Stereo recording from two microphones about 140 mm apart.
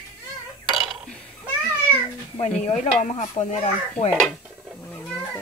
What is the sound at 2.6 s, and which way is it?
Speech, 60° left (ahead or behind).